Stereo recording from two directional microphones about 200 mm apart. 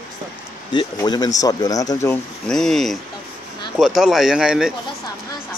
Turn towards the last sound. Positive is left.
turn(degrees=-5)  # may be behind; listen again after turning